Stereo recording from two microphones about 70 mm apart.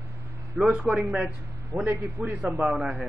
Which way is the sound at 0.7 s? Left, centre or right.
Centre.